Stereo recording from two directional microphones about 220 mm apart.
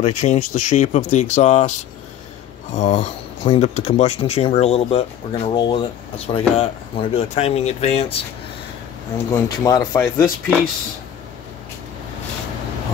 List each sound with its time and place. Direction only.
0.0 s speech: 30° left (ahead or behind)
9.3 s speech: 15° left (ahead or behind)